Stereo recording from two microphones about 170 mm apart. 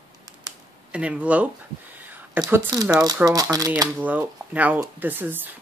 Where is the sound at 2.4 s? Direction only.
20° right (ahead or behind).